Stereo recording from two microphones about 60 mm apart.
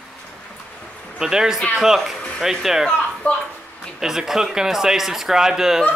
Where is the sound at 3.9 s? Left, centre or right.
Centre.